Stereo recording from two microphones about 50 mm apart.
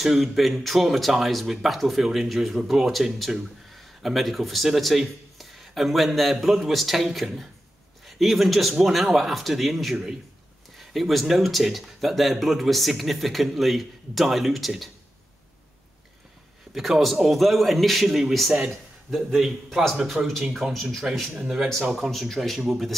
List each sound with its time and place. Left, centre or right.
0.0 s speech: centre
16.7 s speech: centre
20.2 s speech: right
20.8 s speech: centre
21.4 s speech: centre
22.1 s speech: centre